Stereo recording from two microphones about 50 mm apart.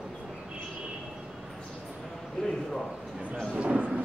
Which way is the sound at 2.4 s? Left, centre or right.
Centre.